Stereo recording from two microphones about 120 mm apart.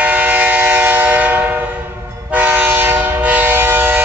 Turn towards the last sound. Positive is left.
turn(degrees=-15)  # may be behind; listen again after turning